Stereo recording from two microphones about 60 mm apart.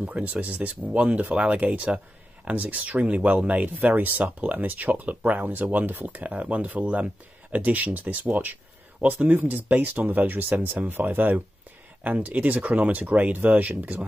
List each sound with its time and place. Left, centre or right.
0.1 s speech: right